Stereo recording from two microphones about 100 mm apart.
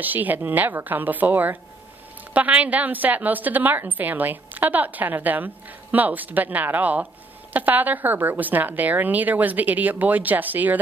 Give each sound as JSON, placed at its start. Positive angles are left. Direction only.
{"t": 0.0, "sound": "a woman's voice", "side_deg": -15}